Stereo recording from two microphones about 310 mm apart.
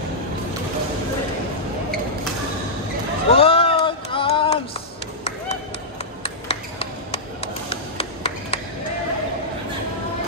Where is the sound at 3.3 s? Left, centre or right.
Centre.